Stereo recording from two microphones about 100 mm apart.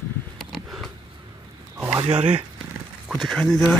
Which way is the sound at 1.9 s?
60° right (ahead or behind).